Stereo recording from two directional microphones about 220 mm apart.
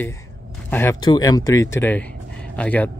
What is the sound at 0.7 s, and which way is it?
Speech, 10° left (ahead or behind).